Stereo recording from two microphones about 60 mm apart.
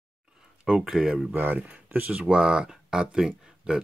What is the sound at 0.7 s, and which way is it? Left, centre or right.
Speech, centre.